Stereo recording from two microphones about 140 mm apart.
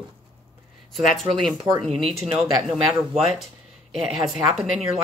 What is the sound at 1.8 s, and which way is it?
A woman's voice, centre (ahead or behind).